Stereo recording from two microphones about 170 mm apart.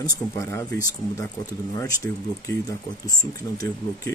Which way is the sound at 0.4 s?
20° left (ahead or behind).